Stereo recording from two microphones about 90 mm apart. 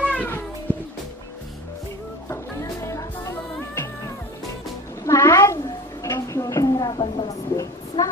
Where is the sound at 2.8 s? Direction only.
35° left (ahead or behind).